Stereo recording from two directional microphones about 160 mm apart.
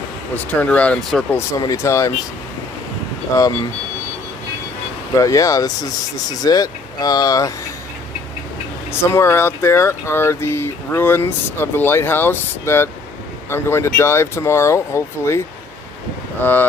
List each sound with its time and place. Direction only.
0.5 s speech: 10° left (ahead or behind)
1.5 s speech: 20° left (ahead or behind)
3.3 s speech: 20° left (ahead or behind)
5.2 s speech: 20° left (ahead or behind)
9.0 s speech: 15° left (ahead or behind)